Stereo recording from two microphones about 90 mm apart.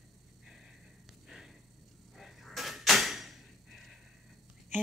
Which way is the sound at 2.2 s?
Centre (ahead or behind).